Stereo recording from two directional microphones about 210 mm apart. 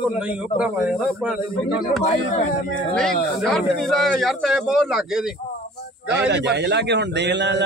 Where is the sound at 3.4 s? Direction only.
Centre (ahead or behind).